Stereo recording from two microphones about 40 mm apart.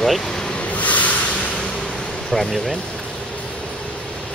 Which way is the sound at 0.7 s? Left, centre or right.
Left.